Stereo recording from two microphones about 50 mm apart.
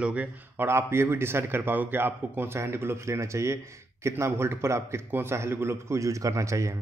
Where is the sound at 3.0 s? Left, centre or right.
Right.